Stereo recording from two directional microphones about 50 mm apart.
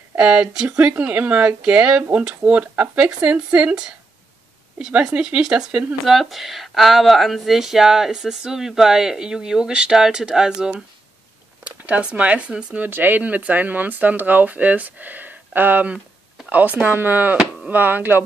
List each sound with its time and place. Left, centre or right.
0.2 s speech: centre
4.7 s speech: centre
6.0 s speech: centre
11.6 s speech: right
12.7 s speech: right